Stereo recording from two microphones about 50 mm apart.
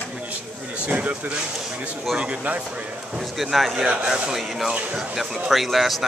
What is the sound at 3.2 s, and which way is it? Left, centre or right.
A man's voice, centre.